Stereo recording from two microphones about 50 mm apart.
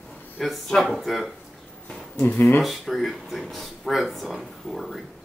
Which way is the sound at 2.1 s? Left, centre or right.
Left.